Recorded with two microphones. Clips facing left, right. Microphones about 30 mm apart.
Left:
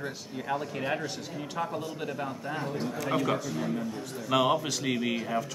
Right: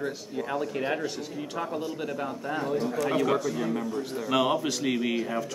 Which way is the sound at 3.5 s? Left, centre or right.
Centre.